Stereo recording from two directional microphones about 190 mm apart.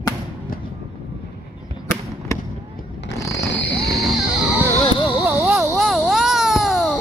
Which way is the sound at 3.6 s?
65° left (ahead or behind).